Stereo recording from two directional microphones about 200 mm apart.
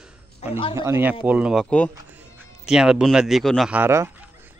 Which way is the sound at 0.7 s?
15° right (ahead or behind).